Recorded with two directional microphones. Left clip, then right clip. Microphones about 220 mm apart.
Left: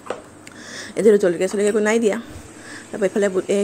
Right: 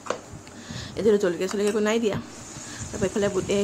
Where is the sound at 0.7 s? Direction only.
30° left (ahead or behind).